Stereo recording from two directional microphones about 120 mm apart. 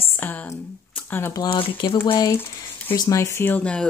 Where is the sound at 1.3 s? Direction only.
40° left (ahead or behind).